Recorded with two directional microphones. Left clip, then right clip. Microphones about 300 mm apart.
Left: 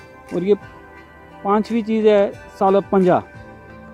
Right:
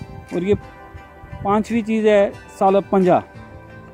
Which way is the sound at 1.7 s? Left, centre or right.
Centre.